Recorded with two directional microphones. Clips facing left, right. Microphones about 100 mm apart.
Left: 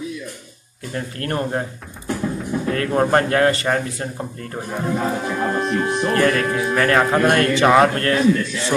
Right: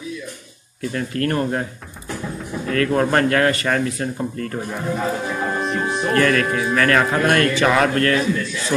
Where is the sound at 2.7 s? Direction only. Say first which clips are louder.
Even; 25° left (ahead or behind).